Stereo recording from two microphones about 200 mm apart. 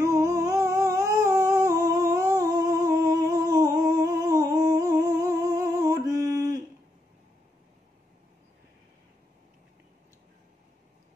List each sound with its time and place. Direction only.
0.0 s humming: 15° right (ahead or behind)